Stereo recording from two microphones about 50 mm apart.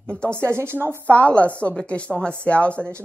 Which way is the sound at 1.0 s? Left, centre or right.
Left.